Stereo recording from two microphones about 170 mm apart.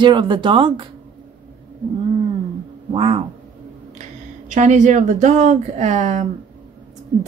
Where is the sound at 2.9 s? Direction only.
30° right (ahead or behind).